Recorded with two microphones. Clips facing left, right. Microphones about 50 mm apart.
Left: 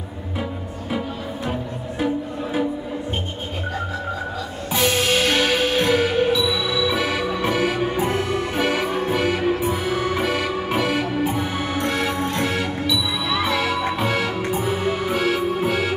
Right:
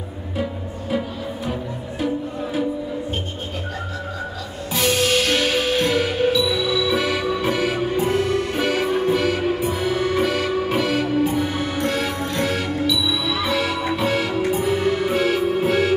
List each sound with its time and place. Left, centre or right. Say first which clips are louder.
4.7 s music: even; centre
7.9 s music: right 2 dB; centre
13.1 s music: even; left
13.6 s music: even; centre